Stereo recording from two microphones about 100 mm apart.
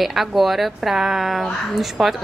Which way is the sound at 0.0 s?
Centre (ahead or behind).